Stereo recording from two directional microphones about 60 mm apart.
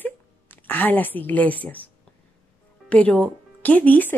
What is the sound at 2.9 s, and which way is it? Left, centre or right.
Speech, left.